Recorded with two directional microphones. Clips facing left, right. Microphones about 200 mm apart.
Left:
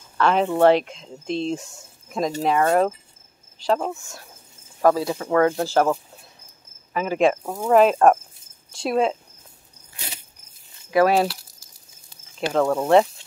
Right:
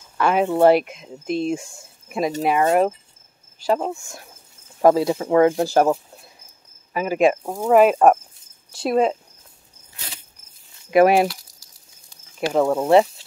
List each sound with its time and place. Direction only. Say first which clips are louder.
0.2 s speech: right 1 dB; 10° right (ahead or behind)
10.9 s speech: right 3 dB; 20° right (ahead or behind)
12.4 s speech: right 2 dB; 10° right (ahead or behind)